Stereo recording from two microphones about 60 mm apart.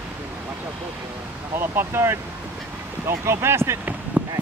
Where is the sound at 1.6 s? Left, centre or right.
Right.